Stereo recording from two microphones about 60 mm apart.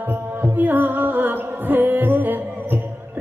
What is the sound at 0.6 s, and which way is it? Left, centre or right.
Music, right.